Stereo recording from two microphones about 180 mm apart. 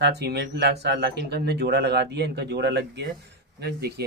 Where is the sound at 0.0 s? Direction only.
65° right (ahead or behind).